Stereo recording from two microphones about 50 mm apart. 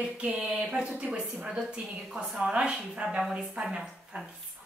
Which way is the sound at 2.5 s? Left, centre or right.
Right.